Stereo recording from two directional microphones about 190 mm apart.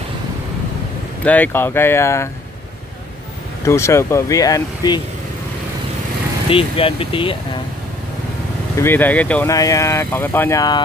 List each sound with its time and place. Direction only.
1.2 s speech: 10° left (ahead or behind)
3.6 s speech: 15° left (ahead or behind)
6.5 s speech: 30° left (ahead or behind)
8.7 s speech: 10° left (ahead or behind)